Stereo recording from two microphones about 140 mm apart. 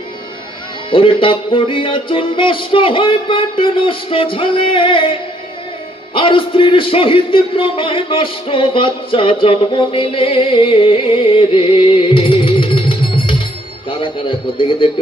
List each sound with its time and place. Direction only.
0.8 s a man's voice: 40° left (ahead or behind)